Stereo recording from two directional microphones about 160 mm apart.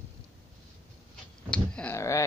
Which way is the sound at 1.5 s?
5° left (ahead or behind).